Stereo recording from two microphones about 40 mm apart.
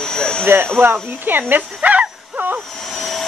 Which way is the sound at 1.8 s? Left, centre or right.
Right.